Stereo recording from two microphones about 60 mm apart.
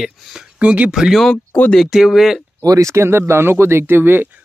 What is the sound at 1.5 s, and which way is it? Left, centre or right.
Speech, left.